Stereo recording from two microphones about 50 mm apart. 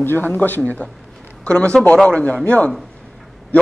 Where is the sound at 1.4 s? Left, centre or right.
Centre.